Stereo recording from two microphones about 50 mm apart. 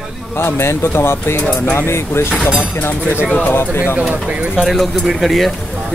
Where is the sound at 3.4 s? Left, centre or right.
Left.